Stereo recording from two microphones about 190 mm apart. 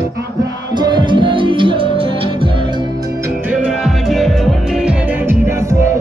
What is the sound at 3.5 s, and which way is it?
Music, 5° right (ahead or behind).